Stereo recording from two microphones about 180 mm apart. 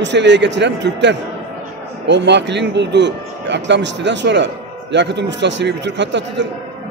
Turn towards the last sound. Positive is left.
turn(degrees=-80)